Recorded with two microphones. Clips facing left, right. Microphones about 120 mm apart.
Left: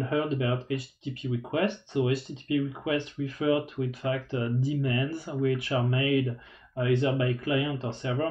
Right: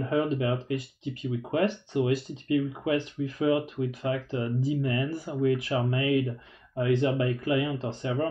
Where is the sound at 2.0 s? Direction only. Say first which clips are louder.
Right 1 dB; 35° right (ahead or behind).